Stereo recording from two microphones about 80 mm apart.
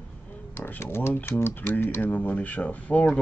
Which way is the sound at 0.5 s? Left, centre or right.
Left.